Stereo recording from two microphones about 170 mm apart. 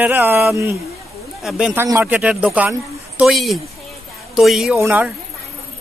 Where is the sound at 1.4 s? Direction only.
5° right (ahead or behind).